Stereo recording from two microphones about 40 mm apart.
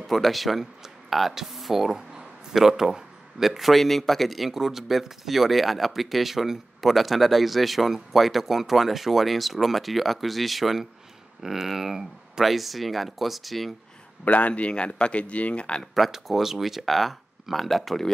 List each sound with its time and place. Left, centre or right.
0.0 s a man's voice: centre
14.2 s speech: left
16.1 s a man's voice: centre